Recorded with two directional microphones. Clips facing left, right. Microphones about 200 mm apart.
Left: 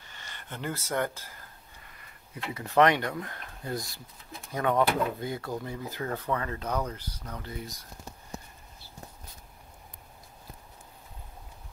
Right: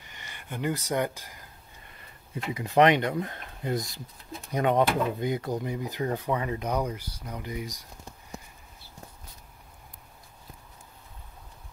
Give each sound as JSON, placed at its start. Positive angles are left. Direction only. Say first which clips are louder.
{"t": 0.0, "sound": "speech", "louder": "right 1 dB", "side_deg": -15}
{"t": 2.5, "sound": "speech", "louder": "right 2 dB", "side_deg": -15}